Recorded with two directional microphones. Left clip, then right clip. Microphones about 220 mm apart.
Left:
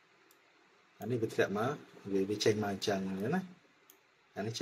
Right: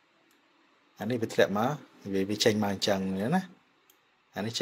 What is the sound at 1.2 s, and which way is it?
Speech, 45° right (ahead or behind).